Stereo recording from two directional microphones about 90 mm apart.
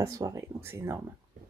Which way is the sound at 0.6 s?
30° right (ahead or behind).